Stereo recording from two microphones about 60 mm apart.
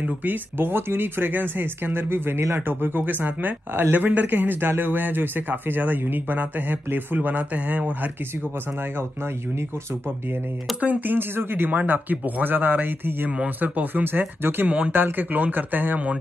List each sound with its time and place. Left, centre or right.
0.0 s speech: right
10.8 s speech: right